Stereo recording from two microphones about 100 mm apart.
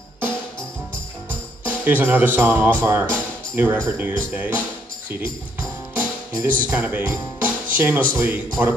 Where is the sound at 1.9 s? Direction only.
15° right (ahead or behind).